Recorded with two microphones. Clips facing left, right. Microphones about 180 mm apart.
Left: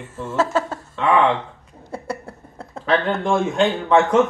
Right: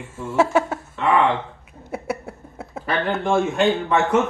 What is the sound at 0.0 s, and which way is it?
Speech, 10° right (ahead or behind).